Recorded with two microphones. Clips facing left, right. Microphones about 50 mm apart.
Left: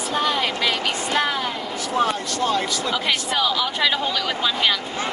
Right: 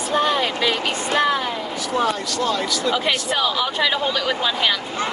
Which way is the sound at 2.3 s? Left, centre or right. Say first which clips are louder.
Even; left.